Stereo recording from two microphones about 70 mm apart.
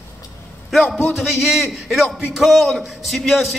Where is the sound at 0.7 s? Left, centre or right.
Centre.